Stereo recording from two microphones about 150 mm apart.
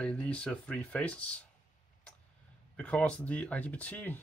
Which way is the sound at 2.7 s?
10° left (ahead or behind).